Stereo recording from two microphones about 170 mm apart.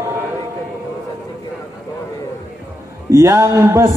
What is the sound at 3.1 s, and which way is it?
Speech, 20° right (ahead or behind).